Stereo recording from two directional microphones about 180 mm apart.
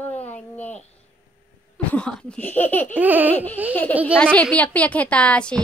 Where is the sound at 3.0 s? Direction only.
10° right (ahead or behind).